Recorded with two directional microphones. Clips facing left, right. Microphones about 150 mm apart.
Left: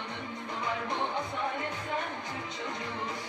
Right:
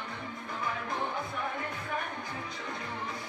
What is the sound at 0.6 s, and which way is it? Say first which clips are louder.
Music: left 2 dB; 20° left (ahead or behind).